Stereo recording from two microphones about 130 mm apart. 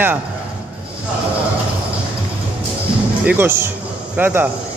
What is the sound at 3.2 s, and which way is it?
Speech, 15° right (ahead or behind).